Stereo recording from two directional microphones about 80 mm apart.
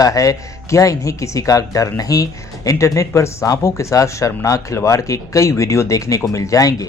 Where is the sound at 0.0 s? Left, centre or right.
Left.